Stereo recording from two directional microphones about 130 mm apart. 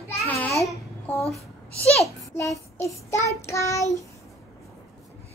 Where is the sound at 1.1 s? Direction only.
10° left (ahead or behind).